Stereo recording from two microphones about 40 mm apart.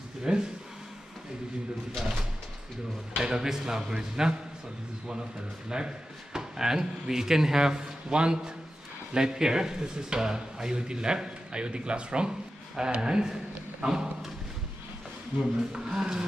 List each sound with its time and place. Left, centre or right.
0.2 s speech: centre
3.2 s speech: centre
5.7 s speech: centre
15.7 s speech: centre